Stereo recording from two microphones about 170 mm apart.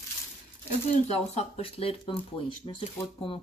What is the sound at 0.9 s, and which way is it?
Speech, 40° left (ahead or behind).